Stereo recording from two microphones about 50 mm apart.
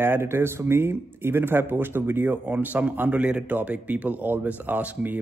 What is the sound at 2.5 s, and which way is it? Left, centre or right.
Speech, right.